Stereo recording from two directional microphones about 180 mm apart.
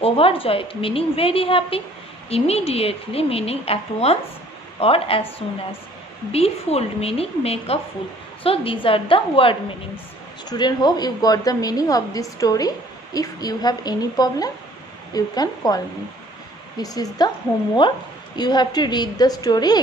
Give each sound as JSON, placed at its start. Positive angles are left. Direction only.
{"t": 0.0, "sound": "a woman's voice", "side_deg": 30}
{"t": 6.3, "sound": "a woman's voice", "side_deg": 35}